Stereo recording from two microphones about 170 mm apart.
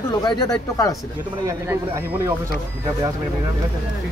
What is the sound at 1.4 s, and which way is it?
Speech, 15° right (ahead or behind).